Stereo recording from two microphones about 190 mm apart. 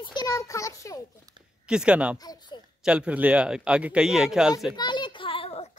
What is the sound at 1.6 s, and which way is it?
Speech, 5° right (ahead or behind).